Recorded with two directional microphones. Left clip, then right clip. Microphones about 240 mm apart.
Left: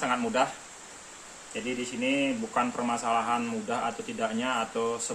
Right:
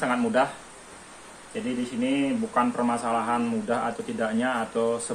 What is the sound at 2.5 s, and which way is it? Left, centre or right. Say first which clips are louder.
A man's voice: right 7 dB; centre.